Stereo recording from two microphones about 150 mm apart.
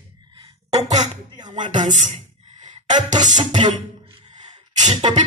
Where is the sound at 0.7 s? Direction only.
50° right (ahead or behind).